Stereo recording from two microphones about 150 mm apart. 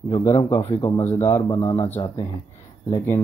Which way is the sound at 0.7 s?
20° left (ahead or behind).